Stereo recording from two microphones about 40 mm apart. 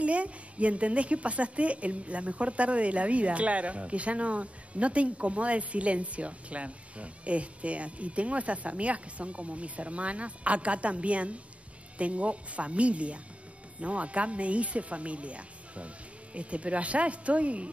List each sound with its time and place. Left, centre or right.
0.0 s a woman's voice: right